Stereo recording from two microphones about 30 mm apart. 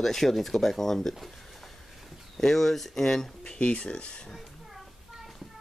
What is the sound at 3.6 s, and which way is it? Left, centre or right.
Speech, left.